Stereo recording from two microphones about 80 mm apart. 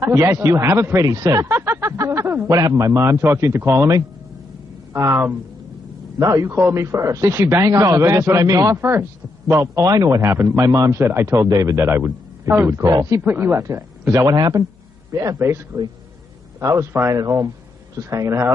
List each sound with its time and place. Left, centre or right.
0.1 s speech: right
1.0 s a man's voice: right
1.5 s a sound: right
2.0 s speech: right
4.9 s speech: right
6.1 s a man's voice: right
6.4 s a man's voice: right
10.3 s speech: right
11.0 s speech: right
12.9 s speech: right
13.2 s a man's voice: right
14.3 s speech: right
17.2 s a man's voice: right